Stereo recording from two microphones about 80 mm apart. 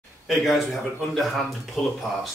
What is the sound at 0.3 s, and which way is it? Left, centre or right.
Speech, centre.